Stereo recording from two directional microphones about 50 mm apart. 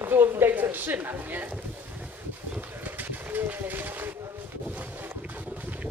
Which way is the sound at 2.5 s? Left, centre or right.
Right.